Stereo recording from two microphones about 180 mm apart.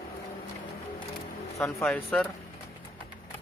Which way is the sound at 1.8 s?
Centre (ahead or behind).